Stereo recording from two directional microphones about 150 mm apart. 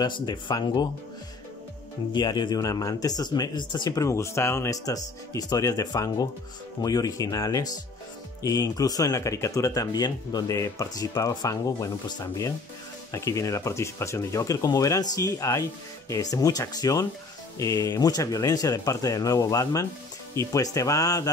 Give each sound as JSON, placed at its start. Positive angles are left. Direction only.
{"t": 0.0, "sound": "speech", "side_deg": 25}
{"t": 2.1, "sound": "speech", "side_deg": 30}